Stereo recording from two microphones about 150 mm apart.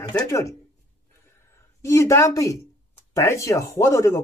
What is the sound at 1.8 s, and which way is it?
Speech, 20° left (ahead or behind).